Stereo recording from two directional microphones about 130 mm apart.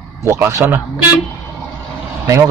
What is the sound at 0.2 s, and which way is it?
Speech, 20° right (ahead or behind).